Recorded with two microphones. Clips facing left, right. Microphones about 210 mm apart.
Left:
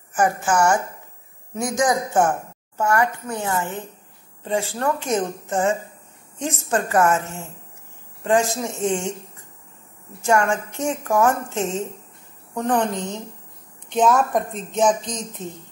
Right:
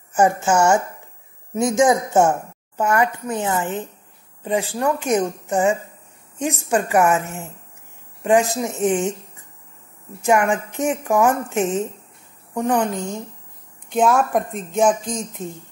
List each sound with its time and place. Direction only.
0.1 s a woman's voice: 25° right (ahead or behind)
10.2 s a woman's voice: 15° right (ahead or behind)